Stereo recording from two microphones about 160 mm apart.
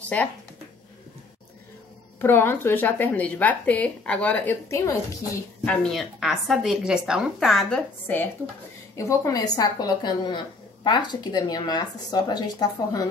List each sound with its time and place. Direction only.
0.0 s speech: 10° left (ahead or behind)
2.1 s speech: 15° left (ahead or behind)
5.7 s speech: 5° left (ahead or behind)
8.9 s speech: 20° left (ahead or behind)